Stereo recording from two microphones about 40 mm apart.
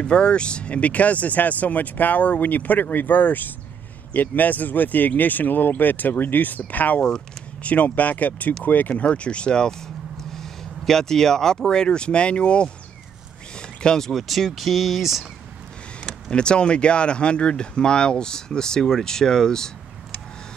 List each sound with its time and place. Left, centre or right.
0.0 s speech: left
10.1 s speech: centre; by 12.7 s left
13.6 s speech: centre
16.0 s speech: left